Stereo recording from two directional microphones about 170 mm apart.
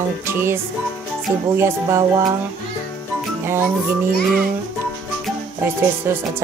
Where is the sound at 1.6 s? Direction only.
15° right (ahead or behind).